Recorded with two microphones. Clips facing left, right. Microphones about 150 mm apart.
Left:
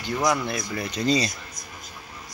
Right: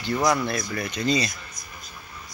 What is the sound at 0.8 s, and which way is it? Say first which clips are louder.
Speech: left 2 dB; 35° left (ahead or behind).